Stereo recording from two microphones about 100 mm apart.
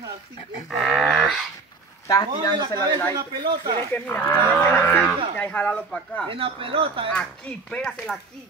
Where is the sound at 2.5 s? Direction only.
50° right (ahead or behind).